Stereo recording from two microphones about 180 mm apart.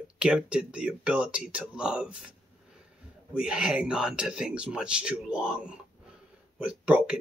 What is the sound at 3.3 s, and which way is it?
Speech, 5° right (ahead or behind).